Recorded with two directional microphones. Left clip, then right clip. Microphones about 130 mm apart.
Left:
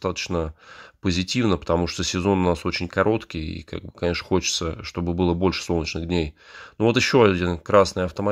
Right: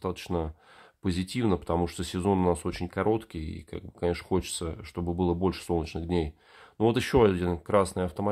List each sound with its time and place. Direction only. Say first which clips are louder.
0.0 s speech: left 6 dB; 20° left (ahead or behind)